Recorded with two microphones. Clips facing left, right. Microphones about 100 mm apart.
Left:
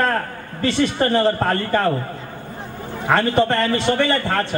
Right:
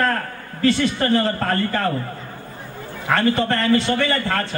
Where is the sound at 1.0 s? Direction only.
30° left (ahead or behind).